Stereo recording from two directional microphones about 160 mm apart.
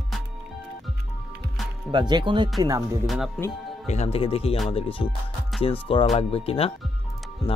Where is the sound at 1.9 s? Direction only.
30° right (ahead or behind).